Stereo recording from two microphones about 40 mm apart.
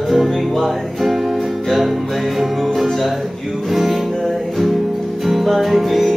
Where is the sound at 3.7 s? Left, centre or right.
Centre.